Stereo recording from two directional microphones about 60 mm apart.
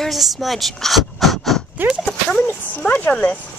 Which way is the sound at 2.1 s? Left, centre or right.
Centre.